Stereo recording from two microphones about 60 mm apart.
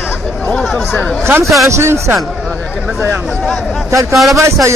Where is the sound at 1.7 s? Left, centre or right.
Right.